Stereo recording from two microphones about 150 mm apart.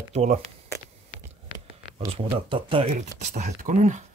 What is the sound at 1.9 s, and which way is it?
Speech, 40° right (ahead or behind).